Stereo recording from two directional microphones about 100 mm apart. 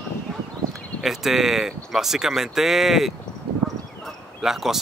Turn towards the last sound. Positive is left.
turn(degrees=-5)  # may be behind; listen again after turning